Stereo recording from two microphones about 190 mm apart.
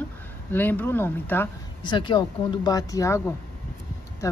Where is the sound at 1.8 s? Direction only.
25° left (ahead or behind).